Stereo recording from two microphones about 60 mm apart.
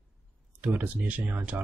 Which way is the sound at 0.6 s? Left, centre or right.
Right.